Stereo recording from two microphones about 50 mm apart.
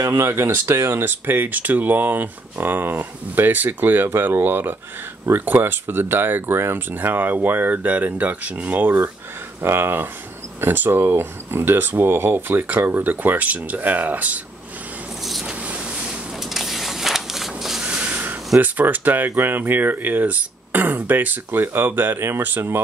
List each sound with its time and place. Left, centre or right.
0.1 s speech: right
0.9 s speech: right
8.8 s speech: right
15.4 s vehicle: right
16.5 s a sound: centre
17.8 s a sound: right
18.6 s speech: right